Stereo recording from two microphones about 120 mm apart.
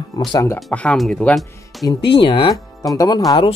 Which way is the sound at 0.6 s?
5° left (ahead or behind).